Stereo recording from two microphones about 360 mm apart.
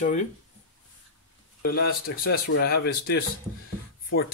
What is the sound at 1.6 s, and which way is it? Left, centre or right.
Speech, left.